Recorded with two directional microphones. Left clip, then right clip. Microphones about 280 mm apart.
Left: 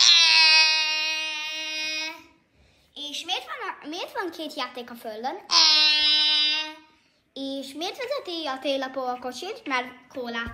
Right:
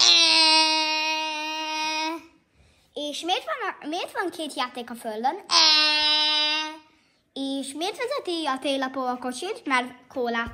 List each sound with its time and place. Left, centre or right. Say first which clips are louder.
0.0 s a sound: left 1 dB; centre
2.9 s a child's voice: right 3 dB; centre
7.3 s a woman's voice: right 2 dB; right